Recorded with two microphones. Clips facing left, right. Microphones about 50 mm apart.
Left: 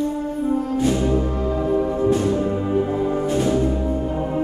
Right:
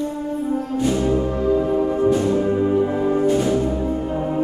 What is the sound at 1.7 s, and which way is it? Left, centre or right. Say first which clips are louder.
Music: right 1 dB; centre.